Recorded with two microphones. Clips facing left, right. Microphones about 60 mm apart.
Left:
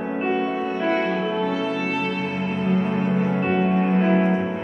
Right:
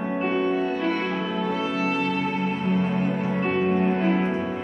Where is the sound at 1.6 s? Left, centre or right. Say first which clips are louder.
Left 1 dB; centre.